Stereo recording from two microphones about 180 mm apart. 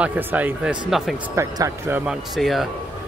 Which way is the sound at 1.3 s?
15° right (ahead or behind).